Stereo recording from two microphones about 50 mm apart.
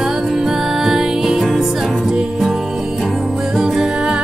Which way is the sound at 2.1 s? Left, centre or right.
Right.